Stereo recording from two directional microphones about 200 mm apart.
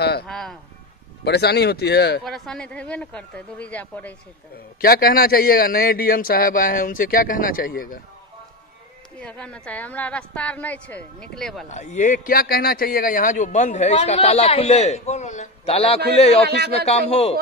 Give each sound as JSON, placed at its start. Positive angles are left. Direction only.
{"t": 0.3, "sound": "speech", "side_deg": 0}
{"t": 1.2, "sound": "speech", "side_deg": 55}
{"t": 2.2, "sound": "speech", "side_deg": 0}
{"t": 4.8, "sound": "a man's voice", "side_deg": 50}
{"t": 9.2, "sound": "a woman's voice", "side_deg": 5}
{"t": 11.7, "sound": "speech", "side_deg": 35}
{"t": 16.4, "sound": "a man's voice", "side_deg": -55}
{"t": 16.7, "sound": "speech", "side_deg": 30}